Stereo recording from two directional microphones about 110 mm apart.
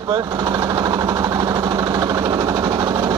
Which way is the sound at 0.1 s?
35° right (ahead or behind).